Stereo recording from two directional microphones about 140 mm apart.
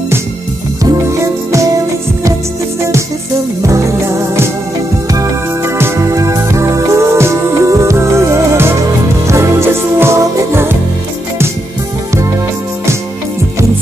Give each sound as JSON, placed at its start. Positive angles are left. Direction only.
{"t": 0.8, "sound": "music", "side_deg": -20}
{"t": 3.6, "sound": "music", "side_deg": -20}
{"t": 5.8, "sound": "music", "side_deg": -20}